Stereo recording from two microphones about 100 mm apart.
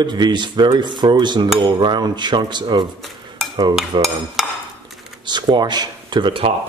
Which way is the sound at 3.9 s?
50° right (ahead or behind).